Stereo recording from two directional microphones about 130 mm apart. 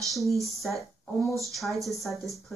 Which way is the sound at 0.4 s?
Centre (ahead or behind).